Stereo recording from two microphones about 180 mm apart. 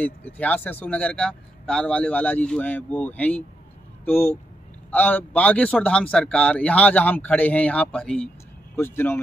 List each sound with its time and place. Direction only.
0.0 s a man's voice: 10° left (ahead or behind)